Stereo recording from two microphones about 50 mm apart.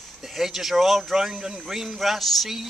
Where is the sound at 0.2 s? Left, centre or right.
Centre.